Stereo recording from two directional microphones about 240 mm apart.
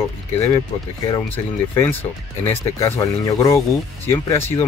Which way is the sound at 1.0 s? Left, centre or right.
Centre.